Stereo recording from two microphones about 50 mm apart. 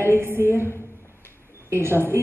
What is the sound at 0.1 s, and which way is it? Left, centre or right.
Speech, right.